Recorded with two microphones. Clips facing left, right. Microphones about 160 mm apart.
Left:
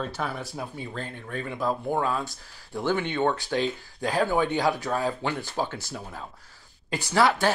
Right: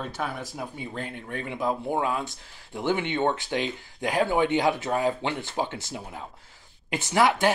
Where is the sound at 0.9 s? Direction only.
20° right (ahead or behind).